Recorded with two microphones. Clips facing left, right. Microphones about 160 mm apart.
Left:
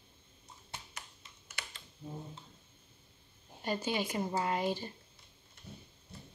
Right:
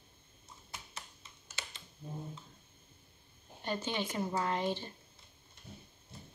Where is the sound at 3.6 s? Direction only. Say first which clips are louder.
Left 2 dB; 10° left (ahead or behind).